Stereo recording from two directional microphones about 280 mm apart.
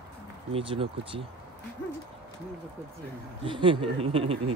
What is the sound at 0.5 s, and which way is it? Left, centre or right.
Speech, centre.